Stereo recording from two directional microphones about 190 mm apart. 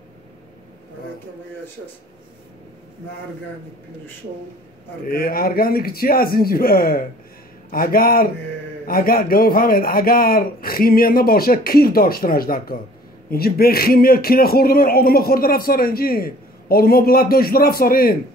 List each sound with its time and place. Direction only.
5.0 s a man's voice: 50° left (ahead or behind)